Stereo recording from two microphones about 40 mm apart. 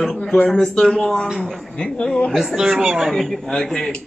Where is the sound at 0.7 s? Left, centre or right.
Left.